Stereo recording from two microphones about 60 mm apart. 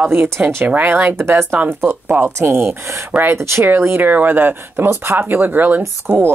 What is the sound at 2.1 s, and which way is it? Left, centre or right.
Speech, right.